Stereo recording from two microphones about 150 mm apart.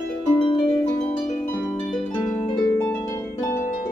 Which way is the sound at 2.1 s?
25° left (ahead or behind).